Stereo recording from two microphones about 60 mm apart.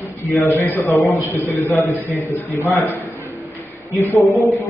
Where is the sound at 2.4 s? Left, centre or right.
Right.